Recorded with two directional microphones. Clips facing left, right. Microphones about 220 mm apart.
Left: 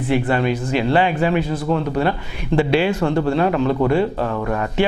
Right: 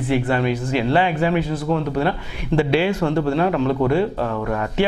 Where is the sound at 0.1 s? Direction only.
15° left (ahead or behind).